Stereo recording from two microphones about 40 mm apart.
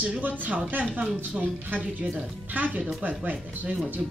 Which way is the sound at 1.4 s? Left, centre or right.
Right.